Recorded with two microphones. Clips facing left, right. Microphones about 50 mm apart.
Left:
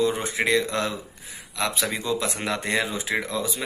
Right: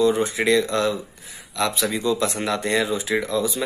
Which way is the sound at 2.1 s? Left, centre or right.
Centre.